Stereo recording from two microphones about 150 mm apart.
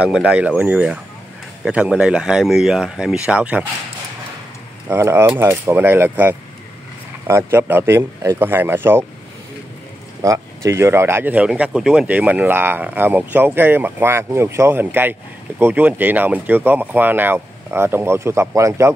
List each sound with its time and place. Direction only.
0.1 s speech: 10° right (ahead or behind)
4.8 s speech: 15° right (ahead or behind)
10.2 s speech: 20° right (ahead or behind)